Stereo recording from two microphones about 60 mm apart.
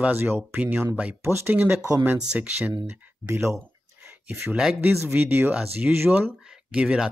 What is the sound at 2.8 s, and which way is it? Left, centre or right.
Speech, right.